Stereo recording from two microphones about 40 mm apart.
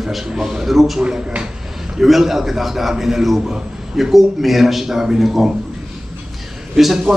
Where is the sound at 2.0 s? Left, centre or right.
Centre.